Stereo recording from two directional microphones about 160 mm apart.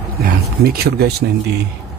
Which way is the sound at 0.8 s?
80° right.